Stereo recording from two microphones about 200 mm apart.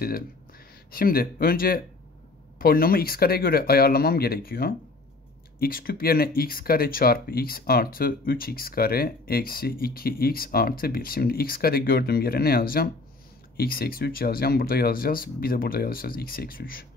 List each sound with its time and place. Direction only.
0.9 s speech: 45° left (ahead or behind)